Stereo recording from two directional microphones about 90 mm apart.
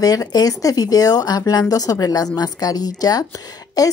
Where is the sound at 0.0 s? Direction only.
45° left (ahead or behind).